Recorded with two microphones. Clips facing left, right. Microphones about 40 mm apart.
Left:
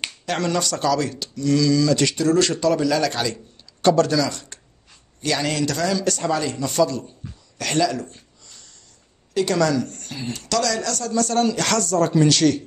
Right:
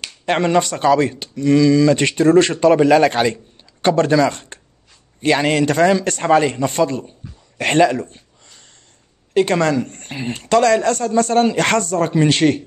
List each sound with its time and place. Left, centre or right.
0.2 s a man's voice: right